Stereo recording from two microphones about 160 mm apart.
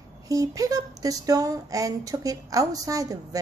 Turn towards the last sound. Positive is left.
turn(degrees=-20)  # may be behind; listen again after turning